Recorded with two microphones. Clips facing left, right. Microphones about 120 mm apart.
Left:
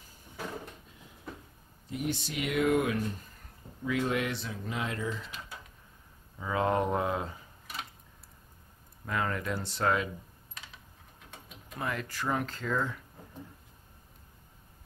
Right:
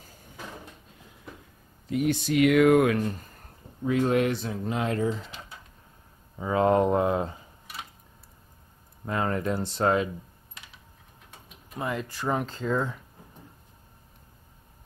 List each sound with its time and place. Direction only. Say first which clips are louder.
2.0 s speech: right 12 dB; 55° right (ahead or behind)
3.8 s speech: right 7 dB; 40° right (ahead or behind)
9.0 s speech: right 5 dB; 30° right (ahead or behind)
11.8 s speech: right 4 dB; 20° right (ahead or behind)